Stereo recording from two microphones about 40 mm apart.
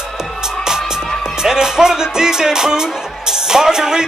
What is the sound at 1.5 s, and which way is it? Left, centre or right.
Speech, centre.